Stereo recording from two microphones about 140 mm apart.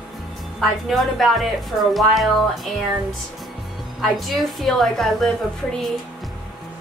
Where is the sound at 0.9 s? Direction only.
Centre (ahead or behind).